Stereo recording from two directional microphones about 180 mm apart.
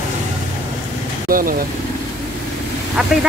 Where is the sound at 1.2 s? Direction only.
50° right (ahead or behind).